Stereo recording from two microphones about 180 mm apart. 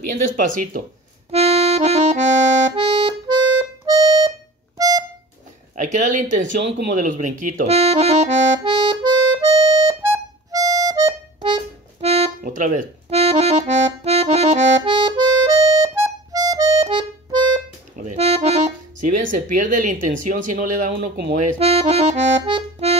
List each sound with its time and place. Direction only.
0.1 s speech: 50° right (ahead or behind)
1.3 s accordion: 35° right (ahead or behind)
3.8 s music: 20° right (ahead or behind)
5.8 s speech: 45° right (ahead or behind)
6.9 s accordion: 45° right (ahead or behind)
12.4 s accordion: 45° right (ahead or behind)
19.3 s speech: 45° right (ahead or behind)
21.5 s accordion: 35° right (ahead or behind)